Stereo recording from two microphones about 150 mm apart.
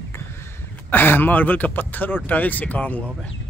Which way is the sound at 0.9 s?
15° left (ahead or behind).